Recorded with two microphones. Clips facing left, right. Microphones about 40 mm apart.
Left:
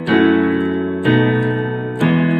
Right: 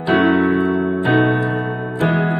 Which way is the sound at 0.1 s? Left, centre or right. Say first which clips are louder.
Left 1 dB; left.